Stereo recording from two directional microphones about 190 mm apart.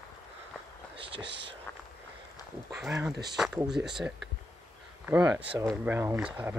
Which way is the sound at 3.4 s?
5° right (ahead or behind).